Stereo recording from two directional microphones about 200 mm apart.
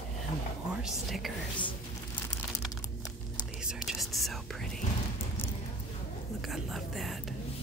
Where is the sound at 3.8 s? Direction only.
Centre (ahead or behind).